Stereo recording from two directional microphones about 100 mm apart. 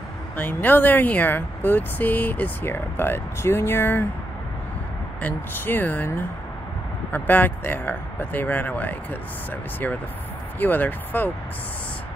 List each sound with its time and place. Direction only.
0.4 s speech: 20° left (ahead or behind)
5.2 s speech: 20° left (ahead or behind)
10.6 s speech: 20° left (ahead or behind)